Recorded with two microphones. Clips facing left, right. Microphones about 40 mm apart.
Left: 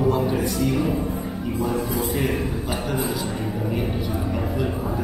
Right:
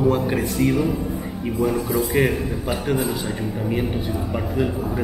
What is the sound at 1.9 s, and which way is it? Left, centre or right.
Speech, right.